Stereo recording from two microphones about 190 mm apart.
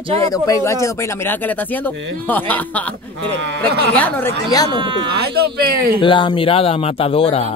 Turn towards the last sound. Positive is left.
turn(degrees=30)  # may be behind; listen again after turning